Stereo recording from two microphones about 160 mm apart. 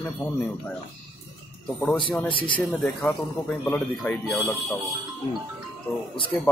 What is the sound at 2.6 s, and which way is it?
A man's voice, 5° left (ahead or behind).